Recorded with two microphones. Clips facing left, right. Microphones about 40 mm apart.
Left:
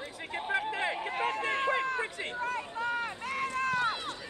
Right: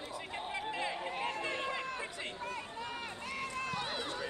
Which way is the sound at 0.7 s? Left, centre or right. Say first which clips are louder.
Left 5 dB; left.